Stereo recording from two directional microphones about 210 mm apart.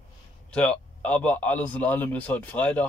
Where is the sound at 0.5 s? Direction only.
5° left (ahead or behind).